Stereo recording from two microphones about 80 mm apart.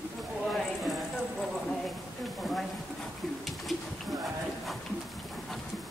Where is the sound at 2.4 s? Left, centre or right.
Centre.